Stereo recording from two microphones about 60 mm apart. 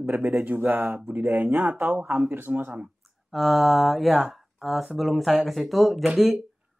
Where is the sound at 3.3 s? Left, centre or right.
Centre.